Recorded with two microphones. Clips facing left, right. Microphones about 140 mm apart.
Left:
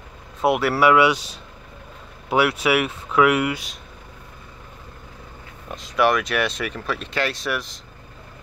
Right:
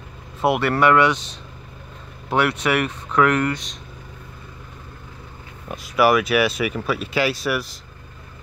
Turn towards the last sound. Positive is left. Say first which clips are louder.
# right 3 dB
turn(degrees=-5)  # may be behind; listen again after turning